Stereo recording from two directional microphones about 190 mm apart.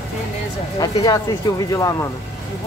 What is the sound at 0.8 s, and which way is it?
Speech, 20° left (ahead or behind).